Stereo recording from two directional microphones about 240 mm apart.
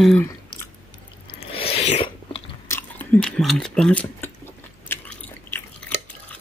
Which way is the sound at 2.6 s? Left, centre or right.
Centre.